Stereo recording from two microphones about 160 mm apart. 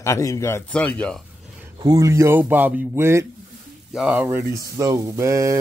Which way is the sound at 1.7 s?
25° right (ahead or behind).